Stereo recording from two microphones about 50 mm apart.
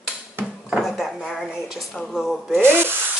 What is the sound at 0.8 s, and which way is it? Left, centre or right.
Speech, centre.